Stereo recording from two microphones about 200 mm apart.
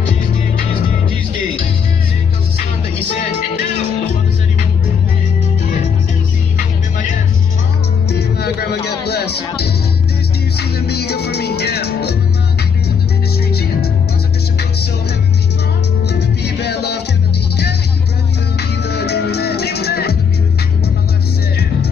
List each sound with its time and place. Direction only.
8.1 s music: 55° left (ahead or behind)
10.6 s music: 55° left (ahead or behind)
13.5 s music: 50° left (ahead or behind)
16.1 s music: 55° left (ahead or behind)
18.6 s music: 55° left (ahead or behind)